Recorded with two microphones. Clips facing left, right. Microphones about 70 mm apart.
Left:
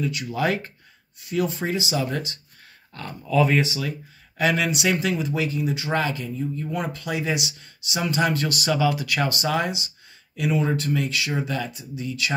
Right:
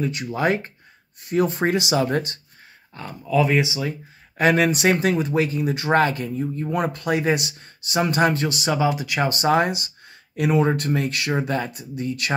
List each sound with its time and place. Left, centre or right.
0.0 s speech: right
1.3 s speech: right
2.0 s speech: right
2.9 s speech: centre
3.6 s speech: centre
4.4 s speech: right
8.4 s speech: right
9.3 s speech: right
9.6 s speech: right